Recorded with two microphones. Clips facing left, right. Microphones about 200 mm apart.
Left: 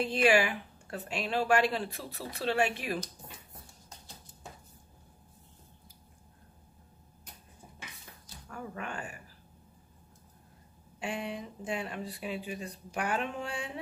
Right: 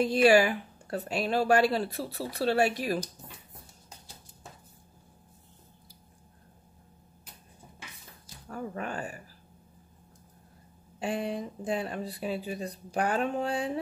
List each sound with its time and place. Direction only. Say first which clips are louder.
0.0 s speech: right 5 dB; 40° right (ahead or behind)
8.5 s speech: right 5 dB; 35° right (ahead or behind)
11.0 s speech: right 5 dB; 35° right (ahead or behind)